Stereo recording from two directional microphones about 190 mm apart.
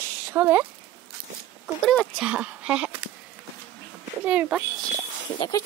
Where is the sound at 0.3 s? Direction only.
10° right (ahead or behind).